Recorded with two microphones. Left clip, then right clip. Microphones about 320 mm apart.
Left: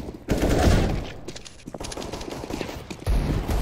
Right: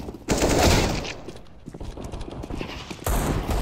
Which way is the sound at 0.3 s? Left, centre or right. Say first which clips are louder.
Right 3 dB; centre.